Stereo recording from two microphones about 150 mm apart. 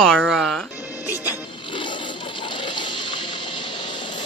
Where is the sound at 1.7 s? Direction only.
30° left (ahead or behind).